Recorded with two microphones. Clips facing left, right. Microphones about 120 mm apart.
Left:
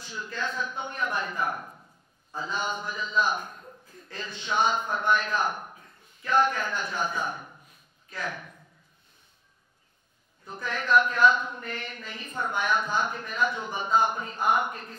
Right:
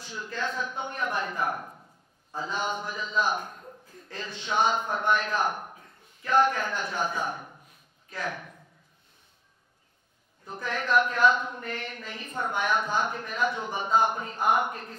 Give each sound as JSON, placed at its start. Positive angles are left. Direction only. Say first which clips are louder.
{"t": 0.0, "sound": "a man's voice", "louder": "right 1 dB", "side_deg": -55}
{"t": 2.3, "sound": "a man's voice", "louder": "right 1 dB", "side_deg": -55}
{"t": 3.4, "sound": "a sound", "louder": "right 1 dB", "side_deg": -30}
{"t": 3.9, "sound": "a man's voice", "louder": "even", "side_deg": -50}
{"t": 5.7, "sound": "a sound", "louder": "right 1 dB", "side_deg": -35}
{"t": 6.2, "sound": "a man's voice", "louder": "right 1 dB", "side_deg": -50}
{"t": 10.4, "sound": "a man's voice", "louder": "right 1 dB", "side_deg": -45}